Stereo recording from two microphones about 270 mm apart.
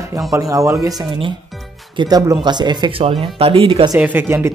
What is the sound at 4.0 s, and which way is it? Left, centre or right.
Speech, centre.